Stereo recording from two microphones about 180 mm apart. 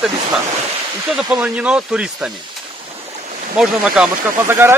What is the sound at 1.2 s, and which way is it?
Speech, 5° right (ahead or behind).